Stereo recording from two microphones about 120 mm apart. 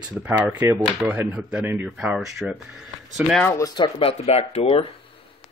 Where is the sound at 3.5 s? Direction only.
30° left (ahead or behind).